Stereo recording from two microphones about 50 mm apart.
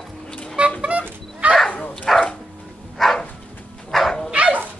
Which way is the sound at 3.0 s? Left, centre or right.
Centre.